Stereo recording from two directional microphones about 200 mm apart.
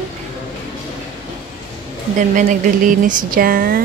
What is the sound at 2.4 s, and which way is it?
Speech, 40° right (ahead or behind).